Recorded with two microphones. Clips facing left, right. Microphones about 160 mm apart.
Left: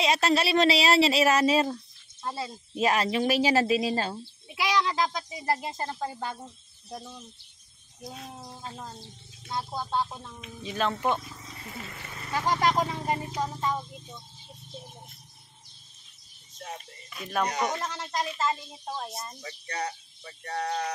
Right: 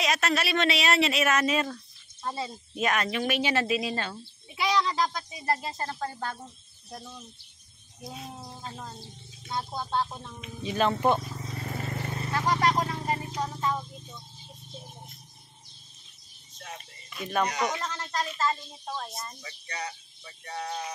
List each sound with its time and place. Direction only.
0.0 s speech: 30° left (ahead or behind)
2.2 s speech: 5° left (ahead or behind)
2.7 s speech: 30° left (ahead or behind)
4.5 s speech: 10° left (ahead or behind)
8.0 s speech: 10° right (ahead or behind)
10.1 s speech: 5° right (ahead or behind)
11.1 s vehicle: 45° right (ahead or behind)
12.3 s speech: 10° left (ahead or behind)
17.1 s speech: centre (ahead or behind)
17.8 s speech: 15° left (ahead or behind)
19.4 s speech: 40° left (ahead or behind)
20.2 s speech: 70° left (ahead or behind)